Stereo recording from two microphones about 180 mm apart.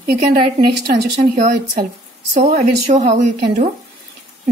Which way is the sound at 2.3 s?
40° right (ahead or behind).